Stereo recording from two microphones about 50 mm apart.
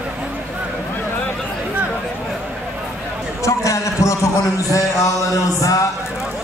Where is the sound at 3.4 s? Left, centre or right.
Left.